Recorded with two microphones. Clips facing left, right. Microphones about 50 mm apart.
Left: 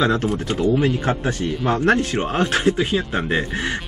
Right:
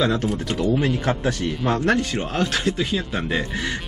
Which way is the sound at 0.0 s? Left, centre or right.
Left.